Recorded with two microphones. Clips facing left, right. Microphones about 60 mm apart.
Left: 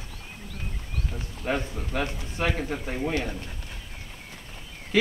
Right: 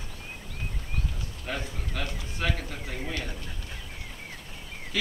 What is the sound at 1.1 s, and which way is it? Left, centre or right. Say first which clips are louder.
A man's voice: left 10 dB; left.